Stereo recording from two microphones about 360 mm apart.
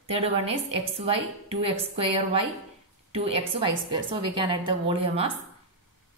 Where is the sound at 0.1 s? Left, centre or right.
Centre.